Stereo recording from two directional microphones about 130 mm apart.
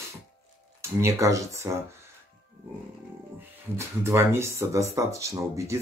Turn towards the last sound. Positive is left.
turn(degrees=-25)  # may be behind; listen again after turning